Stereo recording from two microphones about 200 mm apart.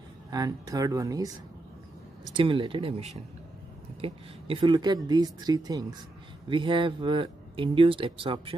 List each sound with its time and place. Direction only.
0.3 s speech: 20° right (ahead or behind)
2.3 s speech: 25° right (ahead or behind)